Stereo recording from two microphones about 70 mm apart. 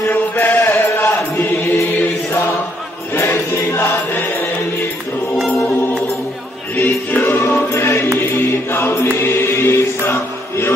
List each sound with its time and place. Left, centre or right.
0.0 s chant: left
3.2 s music: left
6.8 s music: left
8.2 s choir: left